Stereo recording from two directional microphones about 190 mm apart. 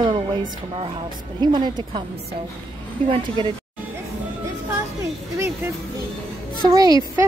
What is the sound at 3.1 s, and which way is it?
Speech, 25° right (ahead or behind).